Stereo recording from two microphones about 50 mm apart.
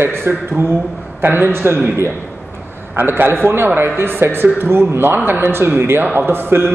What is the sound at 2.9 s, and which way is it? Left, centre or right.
A man's voice, right.